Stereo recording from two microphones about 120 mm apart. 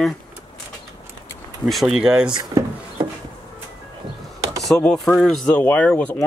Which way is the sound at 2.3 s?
35° right (ahead or behind).